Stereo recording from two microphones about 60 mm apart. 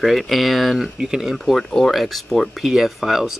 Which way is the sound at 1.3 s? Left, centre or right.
Centre.